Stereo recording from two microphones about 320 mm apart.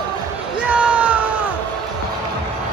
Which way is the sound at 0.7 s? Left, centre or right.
Centre.